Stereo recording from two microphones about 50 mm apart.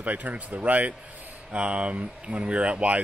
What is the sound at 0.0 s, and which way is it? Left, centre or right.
Speech, right.